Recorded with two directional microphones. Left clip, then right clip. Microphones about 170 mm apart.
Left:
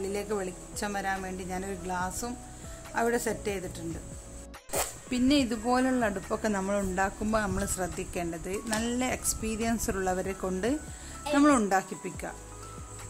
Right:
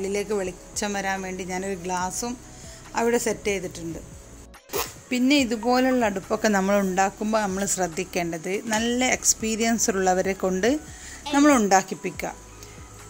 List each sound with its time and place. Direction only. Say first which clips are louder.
0.0 s a woman's voice: right 6 dB; 15° right (ahead or behind)
5.1 s a woman's voice: right 5 dB; 10° right (ahead or behind)
6.4 s speech: right 10 dB; 20° right (ahead or behind)
7.0 s a woman's voice: right 6 dB; 5° right (ahead or behind)
12.0 s speech: right 7 dB; 20° right (ahead or behind)